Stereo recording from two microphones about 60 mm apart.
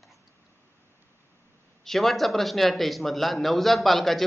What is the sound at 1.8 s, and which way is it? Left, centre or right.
A man's voice, centre.